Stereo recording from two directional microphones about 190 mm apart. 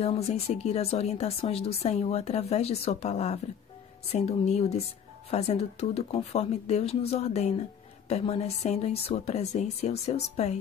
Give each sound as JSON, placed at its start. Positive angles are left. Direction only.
{"t": 0.0, "sound": "speech", "side_deg": 30}